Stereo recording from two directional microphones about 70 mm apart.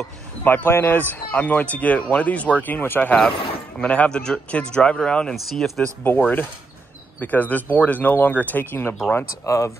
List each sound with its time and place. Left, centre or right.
0.4 s speech: left
3.8 s speech: centre
5.3 s speech: centre
6.0 s speech: left
9.5 s speech: left